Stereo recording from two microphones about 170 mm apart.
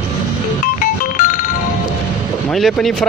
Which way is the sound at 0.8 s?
50° left (ahead or behind).